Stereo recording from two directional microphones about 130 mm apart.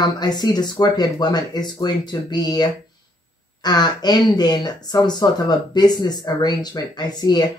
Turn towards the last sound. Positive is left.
turn(degrees=30)  # may be behind; listen again after turning